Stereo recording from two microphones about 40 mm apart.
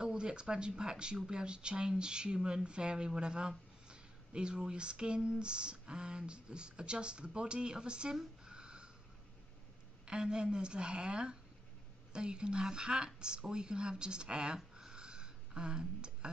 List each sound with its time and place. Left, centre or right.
0.0 s speech: right
1.4 s speech: right
8.5 s a sound: right
10.0 s speech: right